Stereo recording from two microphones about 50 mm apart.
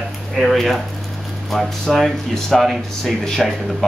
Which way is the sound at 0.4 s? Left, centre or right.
Centre.